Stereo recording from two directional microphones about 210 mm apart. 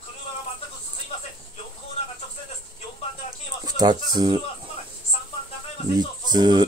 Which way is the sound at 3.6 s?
20° right (ahead or behind).